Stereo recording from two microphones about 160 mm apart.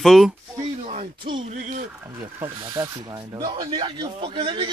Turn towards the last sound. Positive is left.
turn(degrees=-30)  # may be behind; listen again after turning